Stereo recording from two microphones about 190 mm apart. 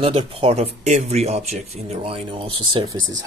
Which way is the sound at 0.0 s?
30° right (ahead or behind).